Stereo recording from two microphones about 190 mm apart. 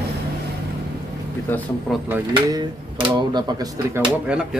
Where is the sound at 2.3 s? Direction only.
20° right (ahead or behind).